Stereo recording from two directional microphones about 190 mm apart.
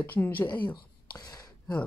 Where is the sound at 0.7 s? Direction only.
20° left (ahead or behind).